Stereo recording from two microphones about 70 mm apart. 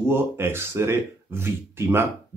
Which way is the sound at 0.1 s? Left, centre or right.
Right.